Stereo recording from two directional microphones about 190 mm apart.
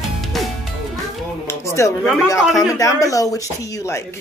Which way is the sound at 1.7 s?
15° left (ahead or behind).